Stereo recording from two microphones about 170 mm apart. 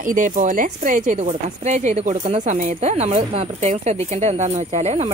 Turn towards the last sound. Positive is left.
turn(degrees=-40)  # may be behind; listen again after turning